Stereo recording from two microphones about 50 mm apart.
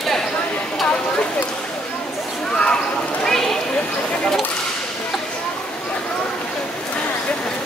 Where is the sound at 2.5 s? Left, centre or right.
Centre.